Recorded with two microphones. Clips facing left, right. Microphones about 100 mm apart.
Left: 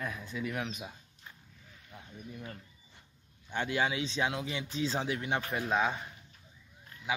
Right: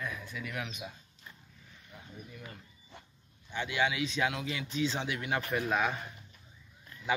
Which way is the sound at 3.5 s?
45° left (ahead or behind).